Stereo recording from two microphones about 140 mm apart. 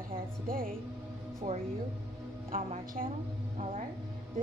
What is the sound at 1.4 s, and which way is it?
Speech, 70° right (ahead or behind).